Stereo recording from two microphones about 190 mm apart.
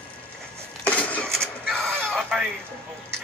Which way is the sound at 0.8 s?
5° left (ahead or behind).